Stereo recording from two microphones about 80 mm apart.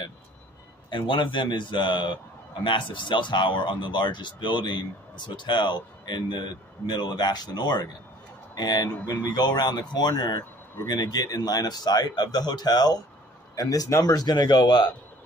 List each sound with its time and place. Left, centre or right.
0.8 s a man's voice: left
14.1 s speech: left